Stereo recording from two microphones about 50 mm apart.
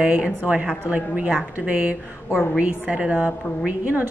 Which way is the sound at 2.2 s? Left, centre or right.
Left.